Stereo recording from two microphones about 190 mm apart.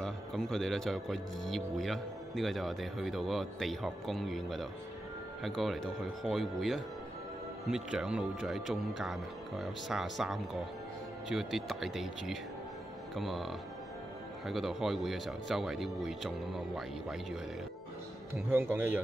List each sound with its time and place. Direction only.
0.0 s speech: centre (ahead or behind)
18.5 s speech: 10° right (ahead or behind)